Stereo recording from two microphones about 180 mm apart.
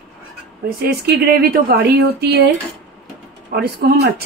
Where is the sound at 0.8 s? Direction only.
65° right (ahead or behind).